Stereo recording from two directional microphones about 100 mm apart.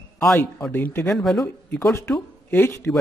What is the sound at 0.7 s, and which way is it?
Speech, 20° left (ahead or behind).